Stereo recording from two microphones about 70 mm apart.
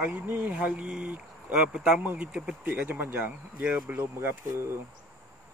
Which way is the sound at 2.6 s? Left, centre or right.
Right.